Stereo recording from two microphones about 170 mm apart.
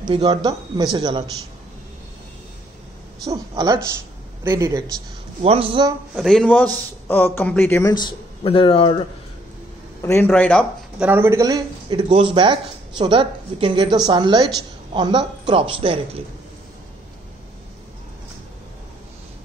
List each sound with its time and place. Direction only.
0.0 s speech: 25° right (ahead or behind)
3.3 s speech: 20° right (ahead or behind)
5.4 s speech: 35° right (ahead or behind)
6.1 s a man's voice: 5° left (ahead or behind); by 9.0 s 30° left (ahead or behind)
10.0 s a man's voice: 15° left (ahead or behind)
11.0 s speech: 10° right (ahead or behind); by 16.0 s 30° right (ahead or behind)